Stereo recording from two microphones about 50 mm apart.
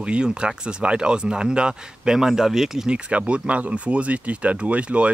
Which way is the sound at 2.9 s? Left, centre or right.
Right.